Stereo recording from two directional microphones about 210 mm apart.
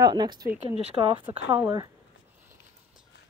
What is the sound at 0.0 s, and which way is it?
Speech, 20° right (ahead or behind).